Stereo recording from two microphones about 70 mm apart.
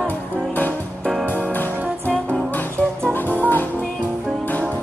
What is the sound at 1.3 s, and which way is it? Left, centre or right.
Music, left.